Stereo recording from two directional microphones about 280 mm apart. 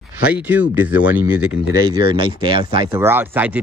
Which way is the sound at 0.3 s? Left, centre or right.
Centre.